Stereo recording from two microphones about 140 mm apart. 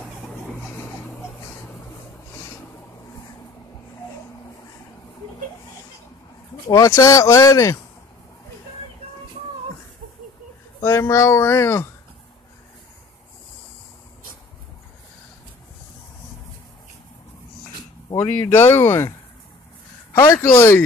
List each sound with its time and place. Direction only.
0.3 s music: 15° left (ahead or behind)
6.7 s speech: 20° left (ahead or behind)
10.8 s speech: 20° left (ahead or behind)
18.1 s speech: 15° left (ahead or behind)
20.1 s a sound: 20° left (ahead or behind)
20.5 s speech: 20° left (ahead or behind)